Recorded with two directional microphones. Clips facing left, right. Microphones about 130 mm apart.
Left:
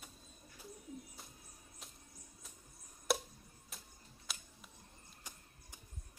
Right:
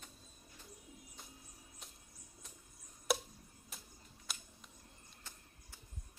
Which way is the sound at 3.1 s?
Centre (ahead or behind).